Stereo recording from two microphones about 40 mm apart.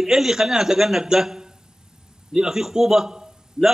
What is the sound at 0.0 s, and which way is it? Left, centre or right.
A man's voice, centre.